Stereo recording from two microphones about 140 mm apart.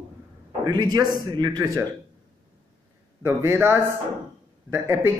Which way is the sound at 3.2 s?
20° right (ahead or behind).